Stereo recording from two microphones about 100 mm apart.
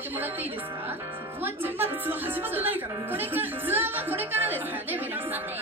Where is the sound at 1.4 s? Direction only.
20° right (ahead or behind).